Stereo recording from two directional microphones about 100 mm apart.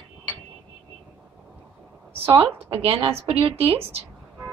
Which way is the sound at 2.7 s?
70° right (ahead or behind).